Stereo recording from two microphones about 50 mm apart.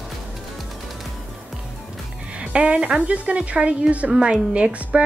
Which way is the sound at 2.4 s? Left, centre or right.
Right.